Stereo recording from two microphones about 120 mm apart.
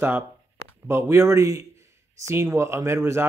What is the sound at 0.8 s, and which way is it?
Speech, 20° right (ahead or behind).